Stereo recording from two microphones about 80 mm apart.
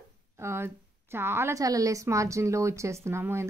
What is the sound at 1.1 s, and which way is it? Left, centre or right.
Speech, right.